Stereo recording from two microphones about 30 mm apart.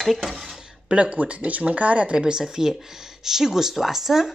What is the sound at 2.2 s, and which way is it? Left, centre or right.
Speech, right.